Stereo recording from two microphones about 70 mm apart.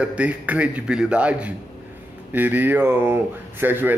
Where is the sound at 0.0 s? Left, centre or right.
Centre.